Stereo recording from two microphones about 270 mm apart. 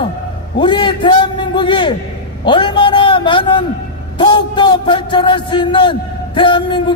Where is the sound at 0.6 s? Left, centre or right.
Centre.